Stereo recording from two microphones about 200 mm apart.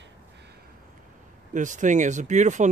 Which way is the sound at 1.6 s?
40° right (ahead or behind).